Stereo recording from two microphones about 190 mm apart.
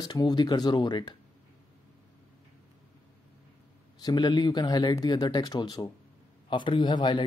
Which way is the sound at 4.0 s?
20° left (ahead or behind).